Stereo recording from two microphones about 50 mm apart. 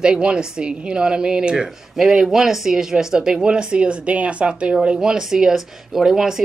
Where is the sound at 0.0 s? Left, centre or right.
Centre.